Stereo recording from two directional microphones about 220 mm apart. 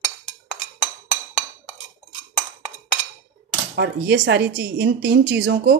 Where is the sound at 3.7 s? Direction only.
50° right (ahead or behind).